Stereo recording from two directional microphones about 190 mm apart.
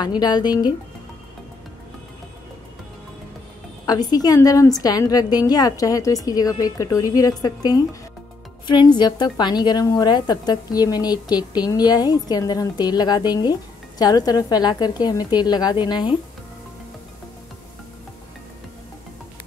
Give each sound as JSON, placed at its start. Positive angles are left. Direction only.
{"t": 0.2, "sound": "a woman's voice", "side_deg": 20}
{"t": 3.8, "sound": "a woman's voice", "side_deg": 20}